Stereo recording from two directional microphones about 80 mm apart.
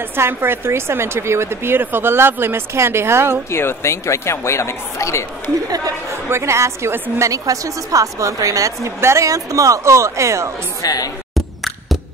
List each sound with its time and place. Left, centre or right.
0.1 s a woman's voice: right
3.4 s speech: left
6.2 s a woman's voice: right
10.8 s a woman's voice: left
11.3 s beatboxing: centre